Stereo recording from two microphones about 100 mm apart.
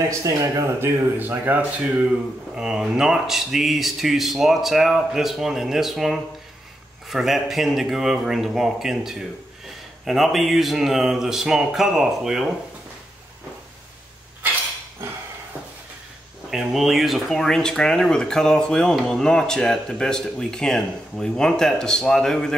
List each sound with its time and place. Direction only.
0.2 s speech: 35° right (ahead or behind); by 12.4 s 5° right (ahead or behind)
16.4 s speech: 5° right (ahead or behind)